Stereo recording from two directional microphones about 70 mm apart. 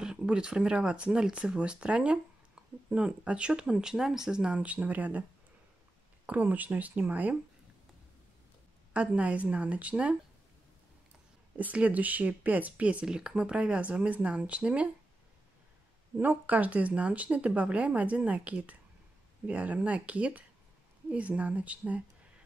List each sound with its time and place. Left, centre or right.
0.0 s speech: centre
6.2 s speech: right
8.9 s speech: centre
11.7 s speech: right
16.2 s speech: right